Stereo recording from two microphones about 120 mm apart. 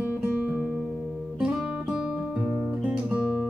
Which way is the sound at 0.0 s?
15° right (ahead or behind).